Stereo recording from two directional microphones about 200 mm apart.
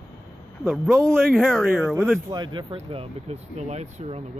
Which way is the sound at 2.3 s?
20° right (ahead or behind).